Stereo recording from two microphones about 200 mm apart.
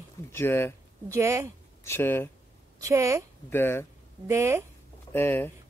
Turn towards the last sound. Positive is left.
turn(degrees=10)  # may be behind; listen again after turning